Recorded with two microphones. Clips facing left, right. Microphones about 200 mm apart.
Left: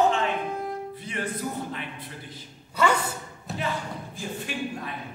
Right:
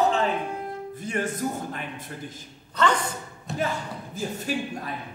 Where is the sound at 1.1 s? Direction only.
45° right (ahead or behind).